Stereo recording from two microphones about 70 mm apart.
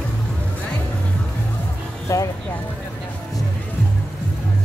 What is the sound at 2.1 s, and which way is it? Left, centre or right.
Music, left.